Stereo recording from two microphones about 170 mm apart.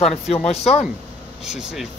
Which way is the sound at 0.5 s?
40° left (ahead or behind).